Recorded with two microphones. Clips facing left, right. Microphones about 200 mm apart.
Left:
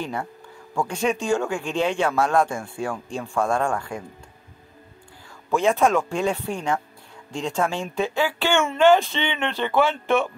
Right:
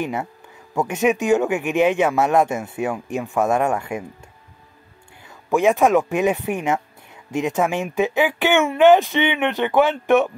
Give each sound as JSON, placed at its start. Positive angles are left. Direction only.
{"t": 0.0, "sound": "speech", "side_deg": -20}
{"t": 5.5, "sound": "speech", "side_deg": -15}